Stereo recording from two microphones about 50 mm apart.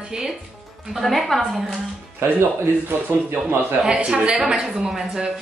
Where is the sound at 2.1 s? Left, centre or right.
Right.